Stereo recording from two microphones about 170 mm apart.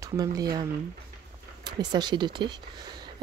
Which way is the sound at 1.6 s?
25° right (ahead or behind).